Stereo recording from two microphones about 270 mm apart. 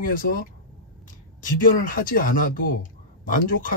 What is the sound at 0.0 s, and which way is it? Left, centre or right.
Speech, left.